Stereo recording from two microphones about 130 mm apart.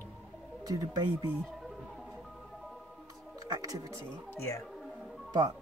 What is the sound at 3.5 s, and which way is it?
Speech, 25° right (ahead or behind).